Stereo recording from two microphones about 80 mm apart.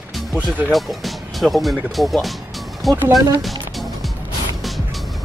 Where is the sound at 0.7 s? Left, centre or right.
Centre.